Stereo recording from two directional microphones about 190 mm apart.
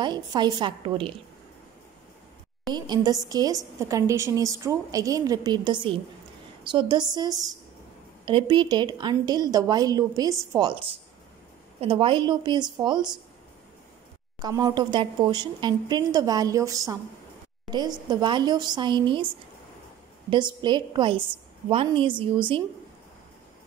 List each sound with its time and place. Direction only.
0.0 s a woman's voice: 25° right (ahead or behind)
2.7 s a woman's voice: 20° right (ahead or behind)
14.4 s a woman's voice: 20° right (ahead or behind)
20.2 s a woman's voice: 25° right (ahead or behind)